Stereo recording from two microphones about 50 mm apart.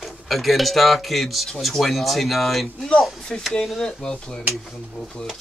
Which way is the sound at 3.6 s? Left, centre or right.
Centre.